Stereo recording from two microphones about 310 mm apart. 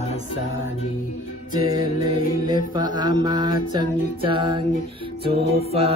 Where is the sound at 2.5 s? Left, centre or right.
Centre.